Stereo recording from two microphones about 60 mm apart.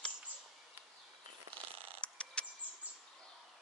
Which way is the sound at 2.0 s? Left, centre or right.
Centre.